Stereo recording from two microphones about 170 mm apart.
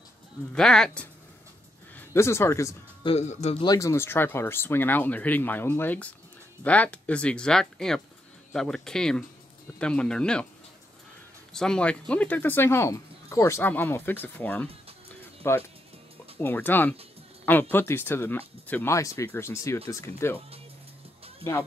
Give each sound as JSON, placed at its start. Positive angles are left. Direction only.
{"t": 0.5, "sound": "speech", "side_deg": 5}
{"t": 2.0, "sound": "speech", "side_deg": 15}
{"t": 3.0, "sound": "speech", "side_deg": 35}
{"t": 3.6, "sound": "speech", "side_deg": 20}
{"t": 11.5, "sound": "speech", "side_deg": 5}
{"t": 21.4, "sound": "speech", "side_deg": 15}